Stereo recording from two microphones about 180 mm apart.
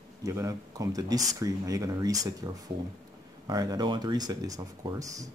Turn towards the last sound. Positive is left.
turn(degrees=-20)  # may be behind; listen again after turning